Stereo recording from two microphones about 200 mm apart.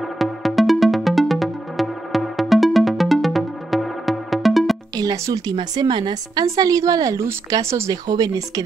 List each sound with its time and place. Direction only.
0.2 s music: centre (ahead or behind)
4.9 s a woman's voice: 15° right (ahead or behind)